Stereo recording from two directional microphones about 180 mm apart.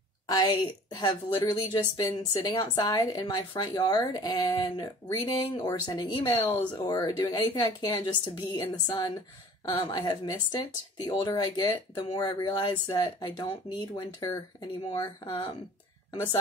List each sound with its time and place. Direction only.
0.3 s a woman's voice: 20° left (ahead or behind)